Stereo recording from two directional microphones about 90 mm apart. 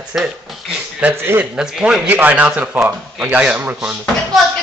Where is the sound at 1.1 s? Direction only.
30° right (ahead or behind).